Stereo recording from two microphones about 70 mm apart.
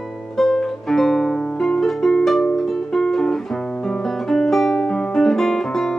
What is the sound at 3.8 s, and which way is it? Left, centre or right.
Guitar, centre.